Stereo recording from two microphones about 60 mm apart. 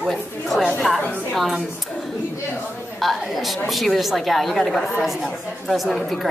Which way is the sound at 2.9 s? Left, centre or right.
Centre.